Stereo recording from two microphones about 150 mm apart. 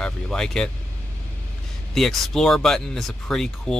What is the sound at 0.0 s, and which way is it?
Speech, 5° left (ahead or behind).